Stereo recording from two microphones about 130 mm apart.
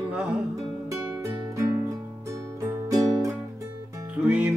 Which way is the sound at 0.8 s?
25° right (ahead or behind).